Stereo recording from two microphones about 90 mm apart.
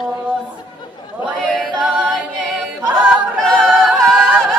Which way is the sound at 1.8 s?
5° left (ahead or behind).